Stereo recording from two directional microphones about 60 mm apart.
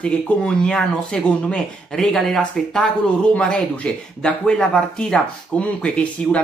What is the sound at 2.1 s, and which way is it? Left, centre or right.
Speech, centre.